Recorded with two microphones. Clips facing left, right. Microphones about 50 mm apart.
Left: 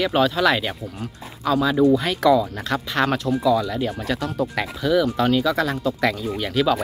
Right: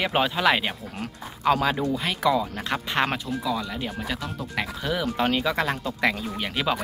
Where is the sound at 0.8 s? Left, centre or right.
Right.